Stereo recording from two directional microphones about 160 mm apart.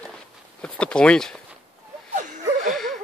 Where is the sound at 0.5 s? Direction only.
5° left (ahead or behind).